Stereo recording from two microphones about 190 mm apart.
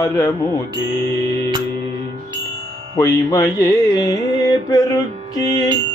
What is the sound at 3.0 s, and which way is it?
Music, 15° left (ahead or behind).